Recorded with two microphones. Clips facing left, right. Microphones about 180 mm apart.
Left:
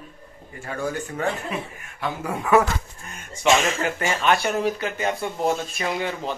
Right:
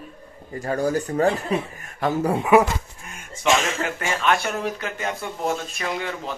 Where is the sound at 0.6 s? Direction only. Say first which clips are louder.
Right 6 dB; 40° right (ahead or behind).